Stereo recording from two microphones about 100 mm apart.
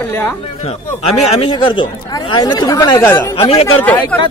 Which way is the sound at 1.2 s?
90° left.